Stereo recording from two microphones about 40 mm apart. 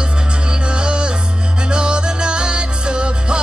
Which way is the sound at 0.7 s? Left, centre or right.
Right.